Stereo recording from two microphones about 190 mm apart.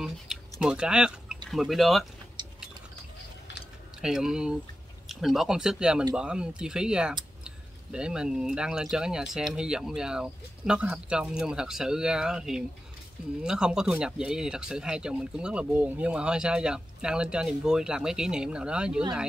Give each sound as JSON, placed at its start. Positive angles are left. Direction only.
{"t": 0.0, "sound": "speech", "side_deg": 0}
{"t": 2.4, "sound": "chewing", "side_deg": -25}
{"t": 4.0, "sound": "speech", "side_deg": -5}